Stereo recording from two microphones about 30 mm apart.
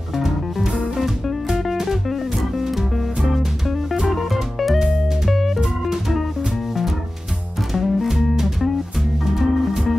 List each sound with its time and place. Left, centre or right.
0.1 s music: centre
7.7 s music: centre